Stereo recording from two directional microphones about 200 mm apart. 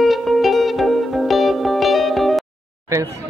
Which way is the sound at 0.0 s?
Centre (ahead or behind).